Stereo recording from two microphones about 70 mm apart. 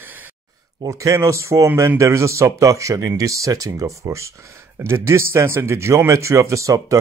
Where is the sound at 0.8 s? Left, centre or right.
Right.